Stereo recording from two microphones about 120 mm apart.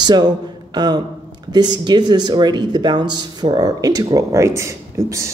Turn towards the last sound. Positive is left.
turn(degrees=-25)  # may be behind; listen again after turning